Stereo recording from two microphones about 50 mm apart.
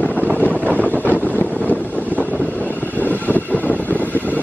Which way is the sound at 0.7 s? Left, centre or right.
Left.